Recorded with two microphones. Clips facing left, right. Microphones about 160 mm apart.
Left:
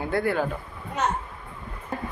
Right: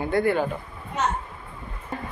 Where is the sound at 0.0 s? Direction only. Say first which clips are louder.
Right 2 dB; centre (ahead or behind).